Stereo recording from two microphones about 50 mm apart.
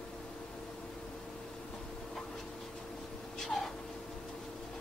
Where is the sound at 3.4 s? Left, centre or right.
Centre.